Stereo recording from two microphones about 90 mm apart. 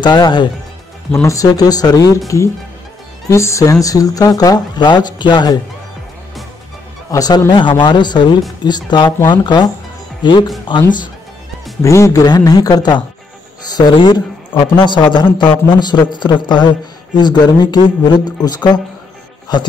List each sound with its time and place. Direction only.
0.0 s a man's voice: 55° left (ahead or behind)
1.2 s speech: 40° left (ahead or behind)
7.1 s a man's voice: 45° left (ahead or behind)
11.8 s speech: 35° left (ahead or behind)
12.3 s speech: 45° left (ahead or behind)
13.9 s a man's voice: 60° left (ahead or behind)